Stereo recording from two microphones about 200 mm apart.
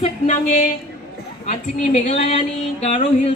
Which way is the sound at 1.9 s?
30° left (ahead or behind).